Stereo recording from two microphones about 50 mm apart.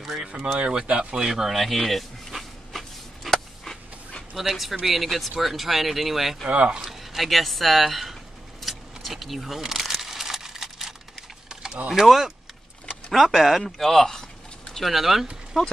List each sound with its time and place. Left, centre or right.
0.0 s speech: centre
0.7 s speech: right
1.1 s speech: centre
3.3 s a sound: centre
4.4 s speech: centre
8.6 s keys jangling: centre
9.6 s crumpling: centre
11.4 s typing: centre
11.9 s speech: centre
14.9 s speech: centre